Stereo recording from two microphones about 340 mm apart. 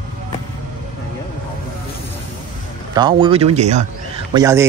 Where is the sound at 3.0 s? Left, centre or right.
Centre.